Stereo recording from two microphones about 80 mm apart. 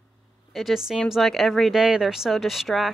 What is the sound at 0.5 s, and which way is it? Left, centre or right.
Speech, centre.